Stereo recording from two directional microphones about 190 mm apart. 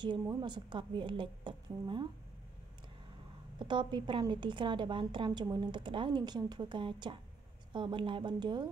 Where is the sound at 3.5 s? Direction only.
25° right (ahead or behind).